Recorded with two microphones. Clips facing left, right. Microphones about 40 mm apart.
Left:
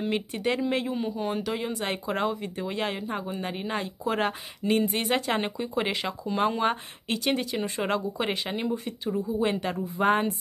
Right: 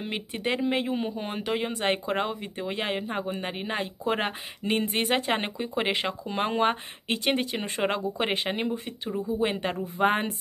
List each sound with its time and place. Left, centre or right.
0.0 s speech: right
4.8 s speech: right
5.1 s speech: right